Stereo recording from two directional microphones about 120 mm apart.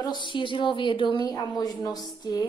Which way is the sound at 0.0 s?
40° left (ahead or behind).